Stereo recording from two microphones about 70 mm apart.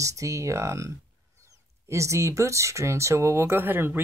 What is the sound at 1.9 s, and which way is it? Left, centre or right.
Speech, right.